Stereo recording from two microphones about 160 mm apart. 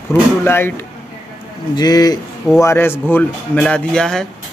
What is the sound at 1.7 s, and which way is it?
Speech, 25° left (ahead or behind).